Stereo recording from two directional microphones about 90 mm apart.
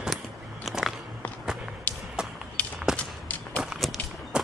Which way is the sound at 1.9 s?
20° left (ahead or behind).